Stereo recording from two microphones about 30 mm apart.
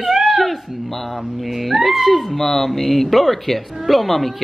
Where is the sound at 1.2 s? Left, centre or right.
Centre.